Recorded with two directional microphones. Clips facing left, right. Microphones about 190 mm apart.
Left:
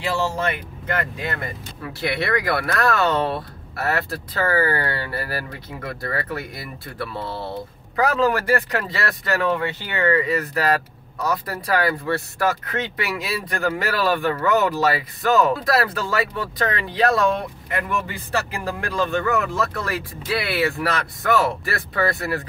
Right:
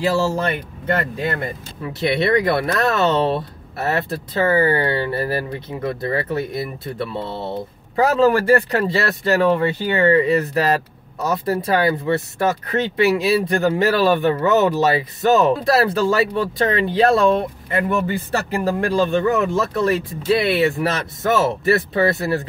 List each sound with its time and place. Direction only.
0.0 s speech: 35° right (ahead or behind)
10.0 s speech: 25° right (ahead or behind)